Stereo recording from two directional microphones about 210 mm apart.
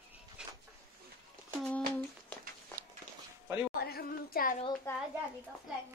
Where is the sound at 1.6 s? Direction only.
5° left (ahead or behind).